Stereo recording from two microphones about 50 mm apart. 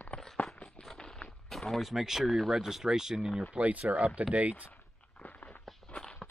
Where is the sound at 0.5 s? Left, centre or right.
Left.